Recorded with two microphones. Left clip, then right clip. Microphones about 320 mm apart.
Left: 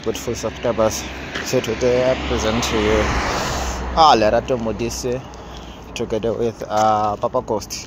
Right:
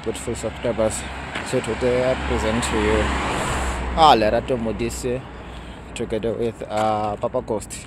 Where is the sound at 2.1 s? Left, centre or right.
Right; by 3.2 s centre.